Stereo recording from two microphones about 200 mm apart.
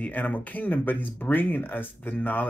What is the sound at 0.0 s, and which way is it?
Speech, 10° left (ahead or behind).